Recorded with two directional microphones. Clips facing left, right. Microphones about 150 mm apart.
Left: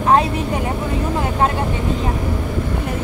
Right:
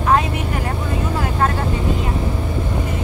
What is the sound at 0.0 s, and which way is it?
Vehicle, 30° left (ahead or behind).